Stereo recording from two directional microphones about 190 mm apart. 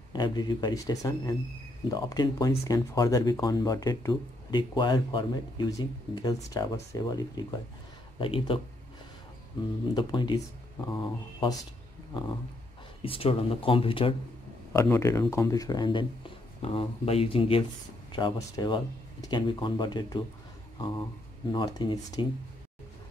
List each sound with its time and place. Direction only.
0.1 s speech: 25° left (ahead or behind)
9.9 s speech: 25° left (ahead or behind)
13.0 s speech: 30° left (ahead or behind)
14.7 s speech: 15° left (ahead or behind)
21.5 s speech: 25° left (ahead or behind)